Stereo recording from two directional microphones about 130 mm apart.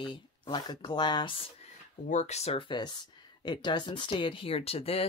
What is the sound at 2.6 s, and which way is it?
Speech, 35° left (ahead or behind).